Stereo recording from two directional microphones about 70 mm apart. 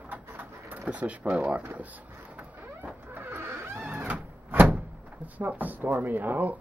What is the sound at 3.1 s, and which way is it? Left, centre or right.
Vehicle, right.